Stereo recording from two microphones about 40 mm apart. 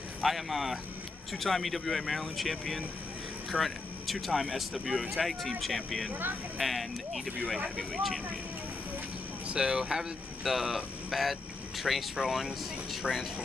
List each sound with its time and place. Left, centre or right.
0.2 s speech: centre
9.5 s speech: centre
10.4 s speech: centre